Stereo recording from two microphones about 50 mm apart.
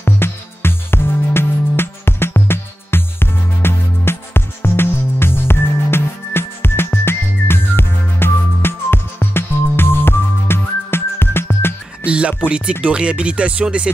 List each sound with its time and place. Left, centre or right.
0.0 s music: left
12.1 s speech: right